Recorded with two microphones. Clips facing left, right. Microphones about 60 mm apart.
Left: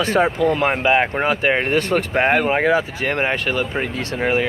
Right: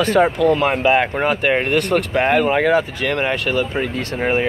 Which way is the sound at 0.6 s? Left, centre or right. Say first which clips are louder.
Right 1 dB; left.